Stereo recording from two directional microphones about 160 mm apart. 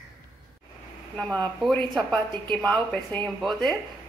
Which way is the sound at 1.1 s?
5° left (ahead or behind).